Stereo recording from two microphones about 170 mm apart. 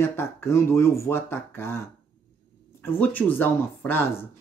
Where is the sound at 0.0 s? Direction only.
15° left (ahead or behind).